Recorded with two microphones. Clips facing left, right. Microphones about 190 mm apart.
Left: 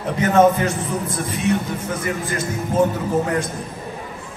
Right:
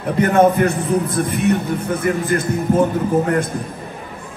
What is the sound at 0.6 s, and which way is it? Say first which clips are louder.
A man's voice: right 6 dB; 60° right (ahead or behind).